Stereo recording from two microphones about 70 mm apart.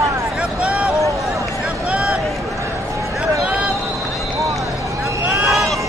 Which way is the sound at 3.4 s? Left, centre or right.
Centre.